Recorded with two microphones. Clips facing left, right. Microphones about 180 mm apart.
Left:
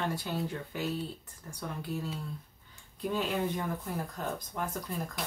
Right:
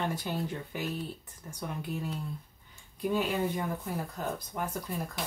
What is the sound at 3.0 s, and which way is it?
Speech, 10° right (ahead or behind).